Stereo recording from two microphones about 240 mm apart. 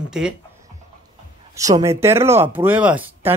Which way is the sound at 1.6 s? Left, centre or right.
Centre.